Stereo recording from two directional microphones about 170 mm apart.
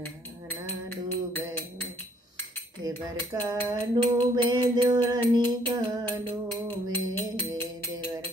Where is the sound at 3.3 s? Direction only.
25° right (ahead or behind).